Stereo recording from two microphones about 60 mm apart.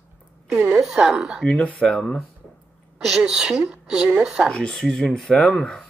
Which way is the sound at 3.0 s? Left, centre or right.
Centre.